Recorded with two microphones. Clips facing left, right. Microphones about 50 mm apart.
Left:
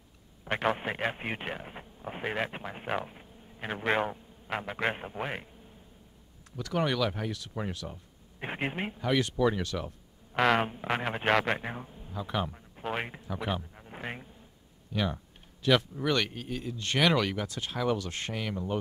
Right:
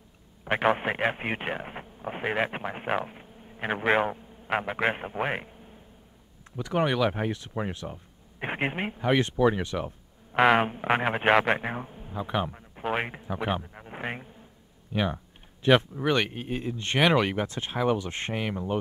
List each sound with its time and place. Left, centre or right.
0.5 s speech: right
3.1 s a sound: right
3.8 s a man's voice: centre